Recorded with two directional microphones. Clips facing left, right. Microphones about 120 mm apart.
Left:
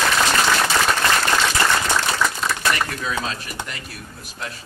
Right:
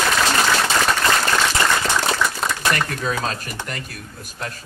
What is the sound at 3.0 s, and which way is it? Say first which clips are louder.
A man's voice: right 2 dB; 40° right (ahead or behind).